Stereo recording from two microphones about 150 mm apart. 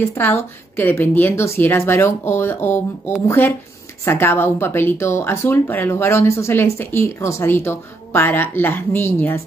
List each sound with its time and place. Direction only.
0.1 s speech: 15° left (ahead or behind)